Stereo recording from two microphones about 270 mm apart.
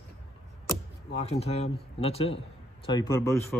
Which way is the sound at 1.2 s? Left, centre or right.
Left.